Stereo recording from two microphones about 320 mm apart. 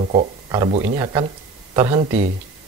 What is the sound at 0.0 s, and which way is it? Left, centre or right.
A man's voice, right.